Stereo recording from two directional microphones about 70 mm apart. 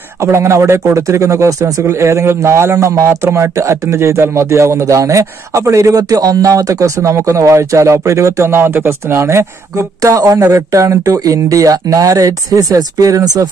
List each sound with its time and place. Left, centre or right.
0.2 s speech: right
5.9 s speech: right